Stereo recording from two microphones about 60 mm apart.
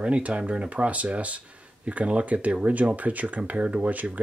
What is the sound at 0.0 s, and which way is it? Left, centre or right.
Speech, centre.